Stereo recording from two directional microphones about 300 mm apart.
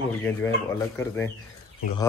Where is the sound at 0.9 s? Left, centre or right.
Centre.